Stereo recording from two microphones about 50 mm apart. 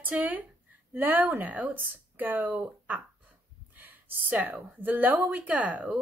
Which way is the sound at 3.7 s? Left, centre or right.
Right.